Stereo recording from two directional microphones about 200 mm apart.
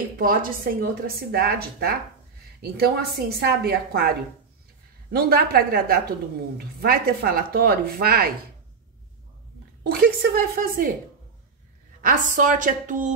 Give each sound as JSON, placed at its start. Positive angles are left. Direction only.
{"t": 0.0, "sound": "a woman's voice", "side_deg": -45}
{"t": 5.1, "sound": "a woman's voice", "side_deg": -50}
{"t": 9.8, "sound": "a woman's voice", "side_deg": -50}
{"t": 12.0, "sound": "a woman's voice", "side_deg": -40}